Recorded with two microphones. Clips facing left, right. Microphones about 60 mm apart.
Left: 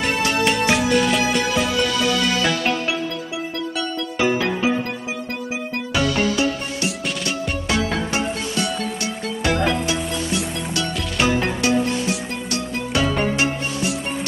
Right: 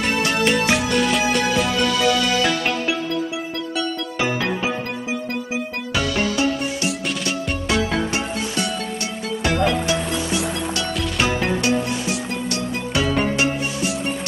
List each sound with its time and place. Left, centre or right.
0.0 s music: centre
11.1 s music: centre